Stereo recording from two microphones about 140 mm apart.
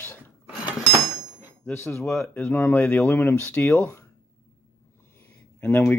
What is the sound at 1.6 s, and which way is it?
Speech, 15° left (ahead or behind).